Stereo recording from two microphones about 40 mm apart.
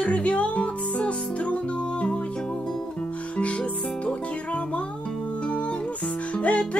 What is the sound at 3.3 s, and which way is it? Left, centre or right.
Music, left.